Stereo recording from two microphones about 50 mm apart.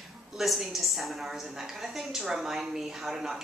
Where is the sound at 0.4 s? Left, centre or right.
Centre.